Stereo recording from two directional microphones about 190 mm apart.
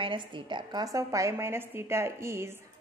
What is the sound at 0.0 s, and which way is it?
A woman's voice, 25° right (ahead or behind).